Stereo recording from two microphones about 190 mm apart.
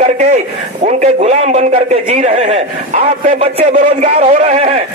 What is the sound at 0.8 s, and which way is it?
A man's voice, 35° right (ahead or behind).